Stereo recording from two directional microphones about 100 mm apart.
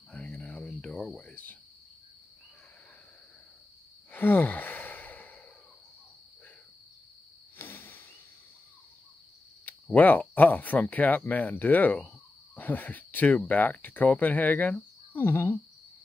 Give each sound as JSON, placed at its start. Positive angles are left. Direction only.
{"t": 0.1, "sound": "cricket", "side_deg": 15}
{"t": 4.1, "sound": "sigh", "side_deg": 20}
{"t": 7.5, "sound": "a sound", "side_deg": 20}
{"t": 9.7, "sound": "speech", "side_deg": 15}